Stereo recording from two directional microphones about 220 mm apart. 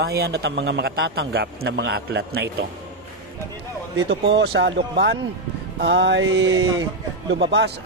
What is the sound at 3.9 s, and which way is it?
Speech, 55° right (ahead or behind).